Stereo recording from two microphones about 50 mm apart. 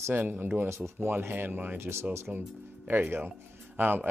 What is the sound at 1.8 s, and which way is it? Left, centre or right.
Speech, right.